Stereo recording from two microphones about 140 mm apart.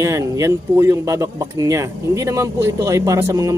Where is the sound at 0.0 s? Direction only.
20° right (ahead or behind).